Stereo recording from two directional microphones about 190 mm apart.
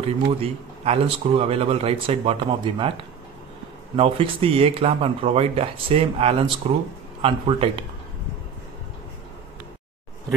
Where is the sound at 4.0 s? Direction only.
30° right (ahead or behind).